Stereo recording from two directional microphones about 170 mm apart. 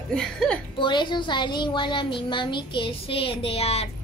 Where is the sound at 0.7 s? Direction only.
30° left (ahead or behind).